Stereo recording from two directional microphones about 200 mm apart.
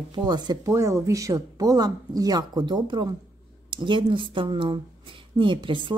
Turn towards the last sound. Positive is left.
turn(degrees=-25)  # may be behind; listen again after turning